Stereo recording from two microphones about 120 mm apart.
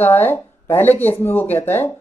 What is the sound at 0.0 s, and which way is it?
Speech, 20° left (ahead or behind).